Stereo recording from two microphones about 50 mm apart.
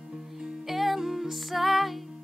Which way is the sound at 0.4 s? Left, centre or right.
Centre.